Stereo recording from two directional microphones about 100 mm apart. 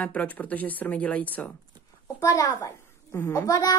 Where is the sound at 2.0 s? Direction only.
35° left (ahead or behind).